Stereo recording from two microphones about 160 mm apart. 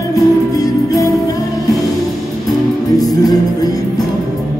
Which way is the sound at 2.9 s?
25° left (ahead or behind).